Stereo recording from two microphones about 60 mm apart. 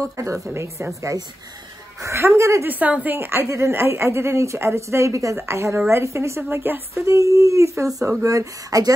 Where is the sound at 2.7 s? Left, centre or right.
Right.